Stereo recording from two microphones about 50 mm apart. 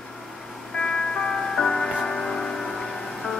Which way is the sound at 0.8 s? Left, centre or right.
Centre.